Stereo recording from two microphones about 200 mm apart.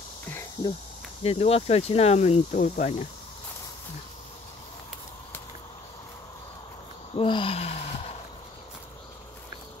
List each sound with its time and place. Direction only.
1.2 s speech: 30° left (ahead or behind)
7.2 s gasp: 25° left (ahead or behind)